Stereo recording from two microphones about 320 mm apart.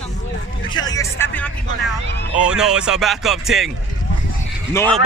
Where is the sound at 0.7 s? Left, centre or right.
Centre.